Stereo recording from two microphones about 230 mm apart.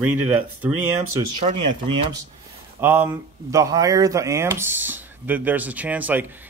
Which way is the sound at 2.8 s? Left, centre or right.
Centre.